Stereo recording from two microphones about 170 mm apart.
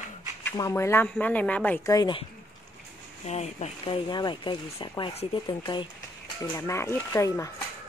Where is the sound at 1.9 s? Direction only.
25° left (ahead or behind).